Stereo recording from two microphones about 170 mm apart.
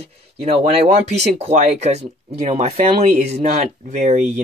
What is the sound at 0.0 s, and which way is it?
Speech, 35° right (ahead or behind).